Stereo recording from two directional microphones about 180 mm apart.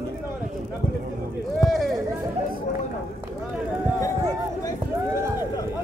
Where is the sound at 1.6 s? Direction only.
Centre (ahead or behind).